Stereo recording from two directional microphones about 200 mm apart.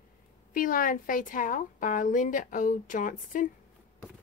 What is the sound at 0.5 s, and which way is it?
A woman's voice, 45° left (ahead or behind).